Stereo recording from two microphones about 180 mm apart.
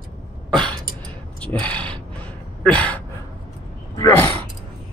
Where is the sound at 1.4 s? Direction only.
5° left (ahead or behind).